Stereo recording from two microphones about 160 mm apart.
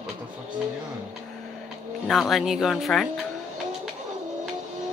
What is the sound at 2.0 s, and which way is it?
Speech, centre (ahead or behind).